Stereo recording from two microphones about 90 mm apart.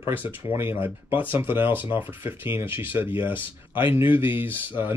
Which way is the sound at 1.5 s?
75° left (ahead or behind).